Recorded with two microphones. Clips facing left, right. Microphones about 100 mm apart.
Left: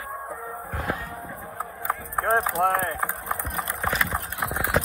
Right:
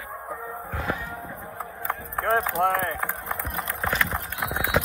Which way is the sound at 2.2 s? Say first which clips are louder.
Even; centre (ahead or behind).